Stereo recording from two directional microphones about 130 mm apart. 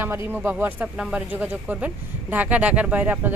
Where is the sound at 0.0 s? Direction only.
15° right (ahead or behind).